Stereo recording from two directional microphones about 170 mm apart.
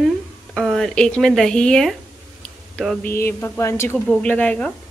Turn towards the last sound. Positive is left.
turn(degrees=5)  # may be behind; listen again after turning